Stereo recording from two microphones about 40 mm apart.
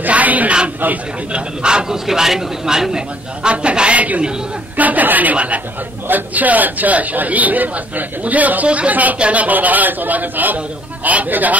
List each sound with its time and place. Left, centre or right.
0.0 s speech: right
1.3 s speech: right
2.0 s speech: centre
3.4 s a man's voice: right